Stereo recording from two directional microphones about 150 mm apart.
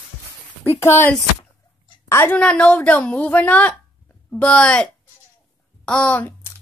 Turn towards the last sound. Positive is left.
turn(degrees=10)  # may be behind; listen again after turning